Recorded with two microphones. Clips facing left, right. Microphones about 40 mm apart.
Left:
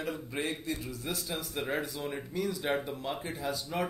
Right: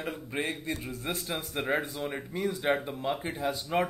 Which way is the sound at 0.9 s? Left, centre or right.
Right.